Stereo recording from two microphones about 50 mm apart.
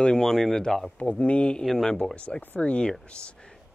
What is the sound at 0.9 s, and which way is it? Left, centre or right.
Speech, left.